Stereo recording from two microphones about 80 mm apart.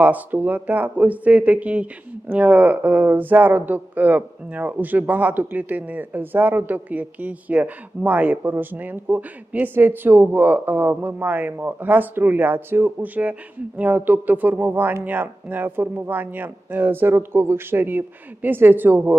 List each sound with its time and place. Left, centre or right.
0.0 s speech: right